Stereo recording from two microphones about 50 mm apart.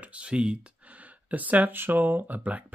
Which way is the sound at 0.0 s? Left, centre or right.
Right.